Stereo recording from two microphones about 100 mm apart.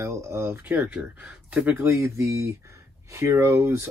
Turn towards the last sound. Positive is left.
turn(degrees=-25)  # may be behind; listen again after turning